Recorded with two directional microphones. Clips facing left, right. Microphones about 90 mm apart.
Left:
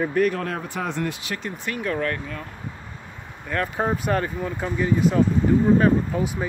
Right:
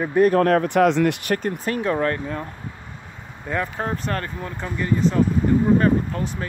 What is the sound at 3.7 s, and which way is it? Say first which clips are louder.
Speech: left 3 dB; 10° left (ahead or behind).